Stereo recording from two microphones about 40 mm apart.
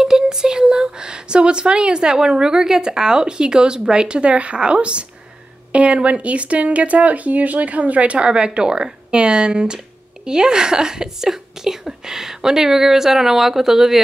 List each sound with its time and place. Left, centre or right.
0.0 s speech: centre